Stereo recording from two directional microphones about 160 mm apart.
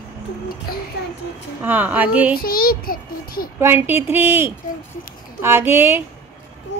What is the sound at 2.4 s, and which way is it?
A child's voice, 65° left (ahead or behind).